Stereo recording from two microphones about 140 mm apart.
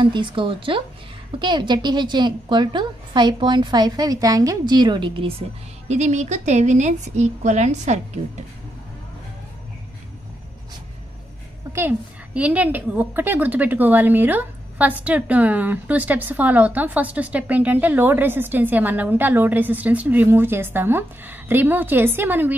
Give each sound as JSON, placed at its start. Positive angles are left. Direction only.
{"t": 0.0, "sound": "a woman's voice", "side_deg": -35}
{"t": 5.9, "sound": "a woman's voice", "side_deg": -55}
{"t": 12.4, "sound": "a woman's voice", "side_deg": -10}